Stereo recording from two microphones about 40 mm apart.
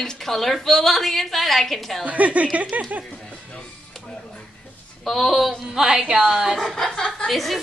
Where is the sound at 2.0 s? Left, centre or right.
Right.